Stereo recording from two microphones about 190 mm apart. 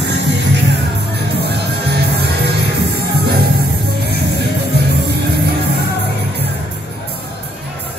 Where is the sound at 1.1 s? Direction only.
60° right (ahead or behind).